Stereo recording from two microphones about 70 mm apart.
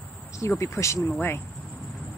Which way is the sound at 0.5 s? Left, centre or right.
Left.